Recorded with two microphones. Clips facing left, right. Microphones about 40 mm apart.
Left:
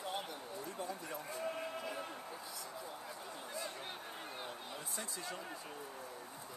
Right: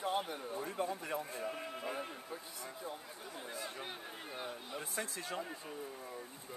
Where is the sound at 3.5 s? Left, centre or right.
Centre.